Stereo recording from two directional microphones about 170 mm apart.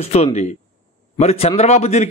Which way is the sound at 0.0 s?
40° left (ahead or behind).